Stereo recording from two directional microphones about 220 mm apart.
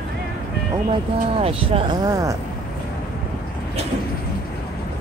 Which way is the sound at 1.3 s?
25° right (ahead or behind).